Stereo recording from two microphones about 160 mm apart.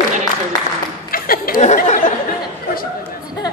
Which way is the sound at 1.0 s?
65° left (ahead or behind).